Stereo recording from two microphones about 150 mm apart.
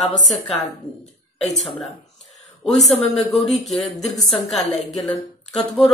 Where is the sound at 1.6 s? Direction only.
Centre (ahead or behind).